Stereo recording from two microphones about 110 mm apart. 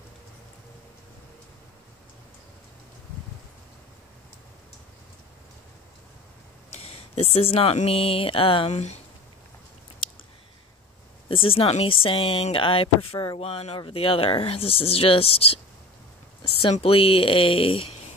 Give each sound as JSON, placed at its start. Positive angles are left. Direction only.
{"t": 6.8, "sound": "speech", "side_deg": 60}
{"t": 8.7, "sound": "speech", "side_deg": 85}
{"t": 11.2, "sound": "speech", "side_deg": 55}
{"t": 16.4, "sound": "a sound", "side_deg": 55}
{"t": 16.7, "sound": "speech", "side_deg": 60}